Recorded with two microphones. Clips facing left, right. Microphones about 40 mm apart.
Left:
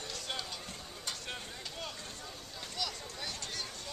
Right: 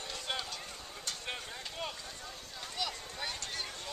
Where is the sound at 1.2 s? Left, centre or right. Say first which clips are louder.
Right 2 dB; centre.